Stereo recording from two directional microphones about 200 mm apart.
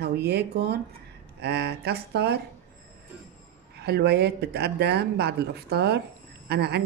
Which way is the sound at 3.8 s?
55° right (ahead or behind).